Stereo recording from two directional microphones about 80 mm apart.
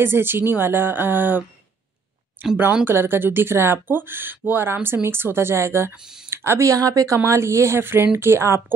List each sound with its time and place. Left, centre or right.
0.0 s speech: right